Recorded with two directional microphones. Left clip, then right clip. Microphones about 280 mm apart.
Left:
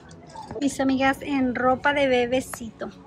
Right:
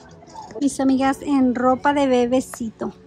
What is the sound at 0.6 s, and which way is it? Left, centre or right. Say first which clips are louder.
A woman's voice: right 3 dB; centre.